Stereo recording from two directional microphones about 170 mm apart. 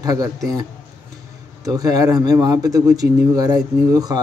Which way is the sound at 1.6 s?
20° right (ahead or behind).